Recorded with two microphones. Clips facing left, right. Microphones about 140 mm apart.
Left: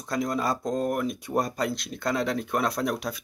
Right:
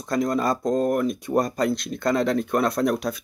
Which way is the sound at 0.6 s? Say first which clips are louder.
Right 5 dB; 40° right (ahead or behind).